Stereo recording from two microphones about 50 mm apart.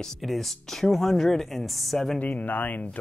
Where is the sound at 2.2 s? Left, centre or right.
Left.